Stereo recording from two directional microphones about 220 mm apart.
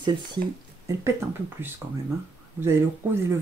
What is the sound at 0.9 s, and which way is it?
Speech, 10° right (ahead or behind).